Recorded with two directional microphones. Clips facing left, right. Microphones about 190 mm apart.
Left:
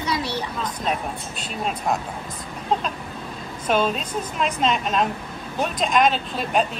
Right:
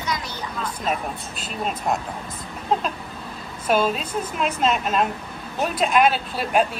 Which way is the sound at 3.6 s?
5° right (ahead or behind).